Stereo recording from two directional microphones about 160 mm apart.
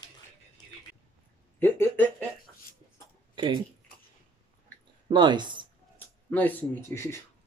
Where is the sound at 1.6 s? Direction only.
10° left (ahead or behind).